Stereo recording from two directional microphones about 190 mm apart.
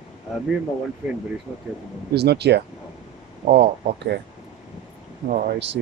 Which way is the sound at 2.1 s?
60° right (ahead or behind).